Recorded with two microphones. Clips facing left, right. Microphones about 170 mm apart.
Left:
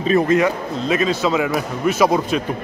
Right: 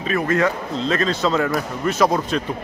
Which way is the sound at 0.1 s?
15° left (ahead or behind).